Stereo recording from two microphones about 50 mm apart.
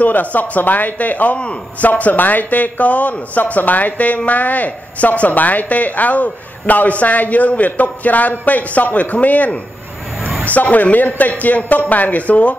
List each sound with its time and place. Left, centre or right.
0.0 s speech: left